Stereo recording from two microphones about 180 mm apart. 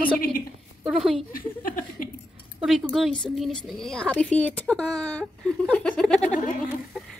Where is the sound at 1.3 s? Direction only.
50° left (ahead or behind).